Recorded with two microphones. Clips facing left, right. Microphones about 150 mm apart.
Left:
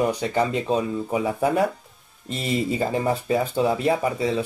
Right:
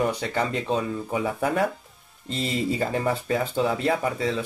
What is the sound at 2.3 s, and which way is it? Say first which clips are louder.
Speech: left 2 dB; 15° left (ahead or behind).